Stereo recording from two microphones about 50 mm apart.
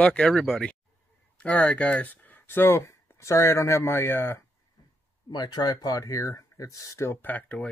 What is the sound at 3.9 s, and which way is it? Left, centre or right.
Speech, left.